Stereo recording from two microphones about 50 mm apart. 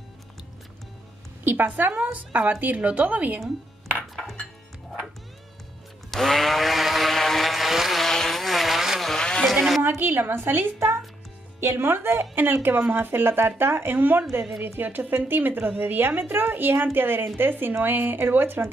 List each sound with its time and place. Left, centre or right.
1.4 s a woman's voice: right
4.1 s music: centre
6.0 s vehicle: centre
8.0 s vehicle: centre
9.0 s vehicle: centre
9.4 s a sound: centre
9.8 s a woman's voice: right